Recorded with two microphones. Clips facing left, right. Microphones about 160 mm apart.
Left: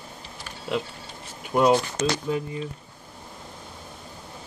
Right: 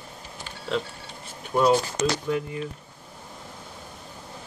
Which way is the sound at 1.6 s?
15° left (ahead or behind).